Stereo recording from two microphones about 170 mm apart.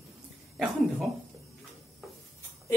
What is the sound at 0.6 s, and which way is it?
Speech, centre (ahead or behind).